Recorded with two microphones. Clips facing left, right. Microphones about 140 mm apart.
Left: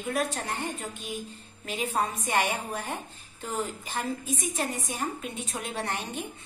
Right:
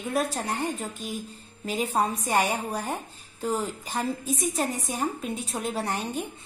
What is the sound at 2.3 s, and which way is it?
Speech, 35° right (ahead or behind).